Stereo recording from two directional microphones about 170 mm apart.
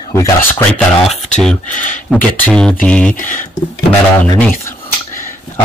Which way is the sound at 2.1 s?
5° left (ahead or behind).